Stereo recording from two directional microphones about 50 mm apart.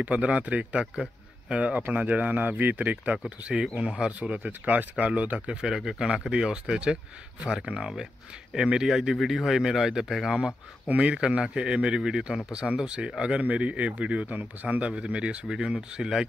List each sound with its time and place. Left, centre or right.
0.0 s speech: right
4.3 s speech: right
5.6 s speech: centre
10.9 s speech: right